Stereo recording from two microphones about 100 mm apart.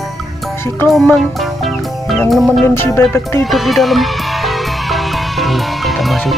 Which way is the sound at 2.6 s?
25° left (ahead or behind).